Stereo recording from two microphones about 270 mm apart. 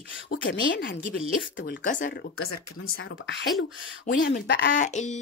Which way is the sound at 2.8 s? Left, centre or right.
Left.